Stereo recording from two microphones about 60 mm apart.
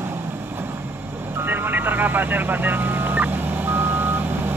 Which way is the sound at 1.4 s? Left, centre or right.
Right.